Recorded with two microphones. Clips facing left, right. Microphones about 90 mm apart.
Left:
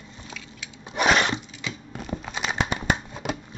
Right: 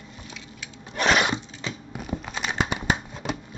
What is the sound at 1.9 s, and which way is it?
Tearing, 5° right (ahead or behind).